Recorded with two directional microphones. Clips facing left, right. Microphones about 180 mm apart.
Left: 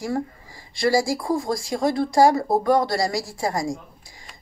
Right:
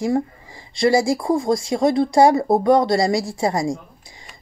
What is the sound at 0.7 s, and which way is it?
Speech, 20° right (ahead or behind).